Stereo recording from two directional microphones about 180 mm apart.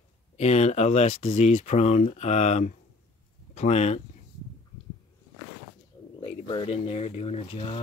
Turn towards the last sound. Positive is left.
turn(degrees=35)  # may be behind; listen again after turning